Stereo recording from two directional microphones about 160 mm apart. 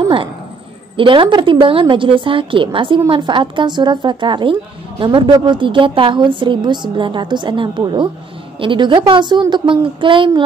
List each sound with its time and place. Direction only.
0.9 s a woman's voice: 30° right (ahead or behind)